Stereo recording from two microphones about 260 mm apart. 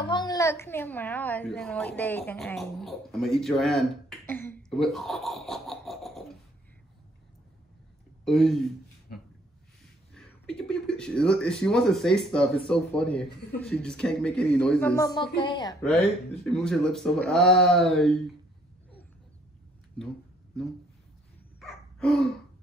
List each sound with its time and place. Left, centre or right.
0.1 s a woman's voice: centre
4.3 s a sound: centre
8.3 s a woman's voice: centre
10.1 s a woman's voice: centre
15.8 s a woman's voice: centre
21.5 s dog: centre